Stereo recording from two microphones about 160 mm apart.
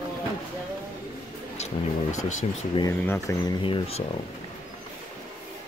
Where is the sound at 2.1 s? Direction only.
50° left (ahead or behind).